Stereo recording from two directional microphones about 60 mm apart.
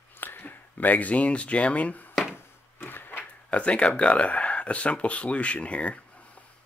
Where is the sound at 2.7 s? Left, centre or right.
Left.